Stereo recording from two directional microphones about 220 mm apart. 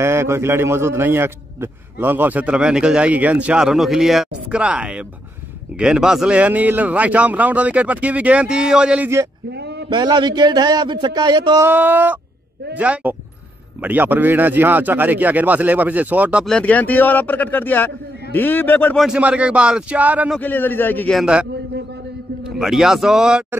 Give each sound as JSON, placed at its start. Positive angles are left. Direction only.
{"t": 0.0, "sound": "a man's voice", "side_deg": -10}
{"t": 9.5, "sound": "a sound", "side_deg": -50}
{"t": 9.8, "sound": "a man's voice", "side_deg": -20}
{"t": 19.0, "sound": "speech", "side_deg": -5}
{"t": 20.3, "sound": "a man's voice", "side_deg": 10}
{"t": 22.6, "sound": "speech", "side_deg": 0}